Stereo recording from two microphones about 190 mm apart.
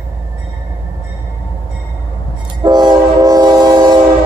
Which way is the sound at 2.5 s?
20° right (ahead or behind).